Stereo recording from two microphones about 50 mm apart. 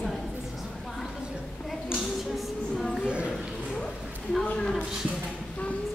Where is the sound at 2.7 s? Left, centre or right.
Centre.